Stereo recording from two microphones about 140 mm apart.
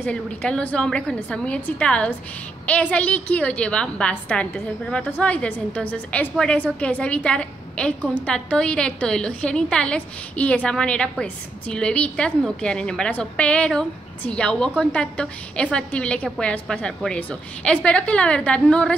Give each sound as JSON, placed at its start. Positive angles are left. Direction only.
{"t": 0.1, "sound": "a woman's voice", "side_deg": 5}